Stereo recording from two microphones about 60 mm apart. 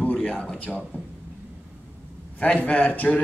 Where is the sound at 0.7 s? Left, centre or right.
Centre.